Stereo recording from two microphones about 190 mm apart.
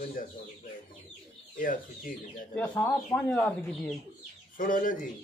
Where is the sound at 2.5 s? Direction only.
10° left (ahead or behind).